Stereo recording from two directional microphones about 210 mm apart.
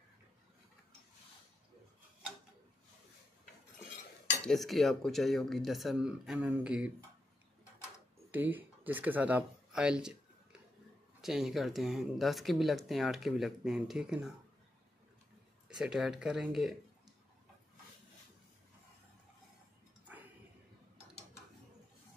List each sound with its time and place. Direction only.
4.5 s speech: centre (ahead or behind)
8.3 s speech: 10° right (ahead or behind)
11.1 s speech: centre (ahead or behind)
15.8 s speech: 5° right (ahead or behind)